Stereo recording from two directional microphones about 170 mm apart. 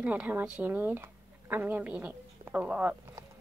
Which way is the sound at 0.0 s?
10° right (ahead or behind).